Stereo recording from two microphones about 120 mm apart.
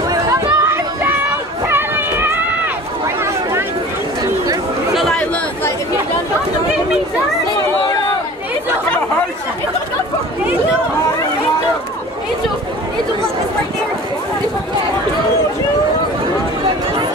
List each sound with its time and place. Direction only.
0.1 s chatter: 30° right (ahead or behind)
1.7 s run: 20° right (ahead or behind)
4.9 s chatter: 5° left (ahead or behind)